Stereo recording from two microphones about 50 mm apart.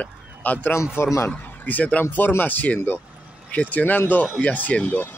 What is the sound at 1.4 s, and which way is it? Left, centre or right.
Speech, left.